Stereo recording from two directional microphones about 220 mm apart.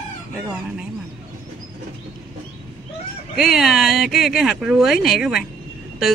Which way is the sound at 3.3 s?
Centre (ahead or behind).